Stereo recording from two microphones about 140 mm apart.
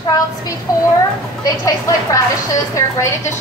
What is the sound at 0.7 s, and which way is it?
A woman's voice, 25° left (ahead or behind).